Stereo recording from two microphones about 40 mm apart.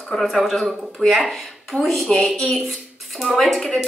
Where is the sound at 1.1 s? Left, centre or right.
Centre.